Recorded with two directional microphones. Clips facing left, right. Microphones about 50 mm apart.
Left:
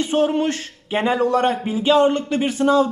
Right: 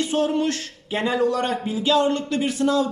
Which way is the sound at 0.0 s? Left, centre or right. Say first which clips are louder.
Left 3 dB; left.